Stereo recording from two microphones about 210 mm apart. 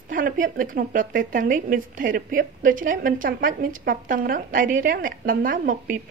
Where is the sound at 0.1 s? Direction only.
40° right (ahead or behind).